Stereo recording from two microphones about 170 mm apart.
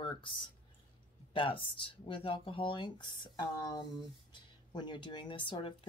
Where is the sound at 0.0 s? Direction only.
30° left (ahead or behind).